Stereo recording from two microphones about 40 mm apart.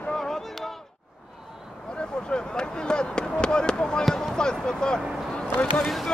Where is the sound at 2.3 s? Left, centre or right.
Centre.